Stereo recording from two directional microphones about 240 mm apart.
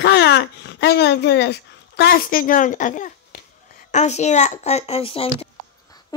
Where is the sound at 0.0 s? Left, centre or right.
Left.